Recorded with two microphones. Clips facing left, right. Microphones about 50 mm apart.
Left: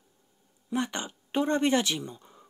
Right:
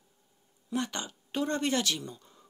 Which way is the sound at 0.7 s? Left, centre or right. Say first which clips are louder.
Left 3 dB; left.